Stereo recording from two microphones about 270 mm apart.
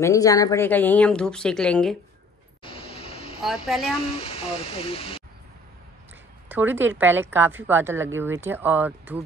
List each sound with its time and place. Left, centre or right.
0.0 s speech: centre
2.6 s a sound: centre
3.4 s speech: centre
4.0 s speech: left
6.5 s a woman's voice: centre